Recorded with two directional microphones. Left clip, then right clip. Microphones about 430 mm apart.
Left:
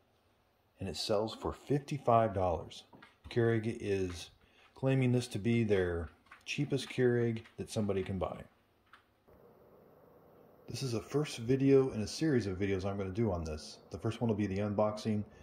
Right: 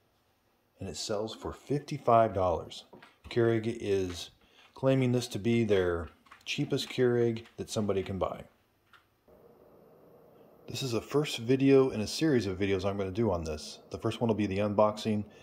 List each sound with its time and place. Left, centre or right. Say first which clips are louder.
0.7 s speech: left 1 dB; centre
10.6 s speech: right 5 dB; centre